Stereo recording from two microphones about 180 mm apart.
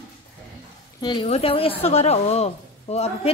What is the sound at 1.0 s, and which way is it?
A woman's voice, 25° left (ahead or behind).